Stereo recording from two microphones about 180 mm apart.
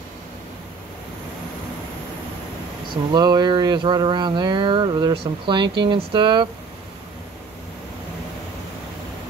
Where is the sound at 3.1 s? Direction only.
20° right (ahead or behind).